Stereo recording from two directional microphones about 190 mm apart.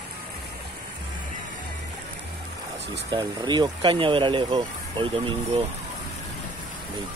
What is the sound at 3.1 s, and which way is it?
Speech, 20° right (ahead or behind).